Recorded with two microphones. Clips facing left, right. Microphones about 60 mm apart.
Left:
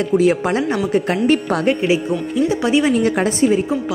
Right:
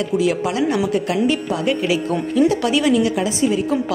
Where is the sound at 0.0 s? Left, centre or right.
Left.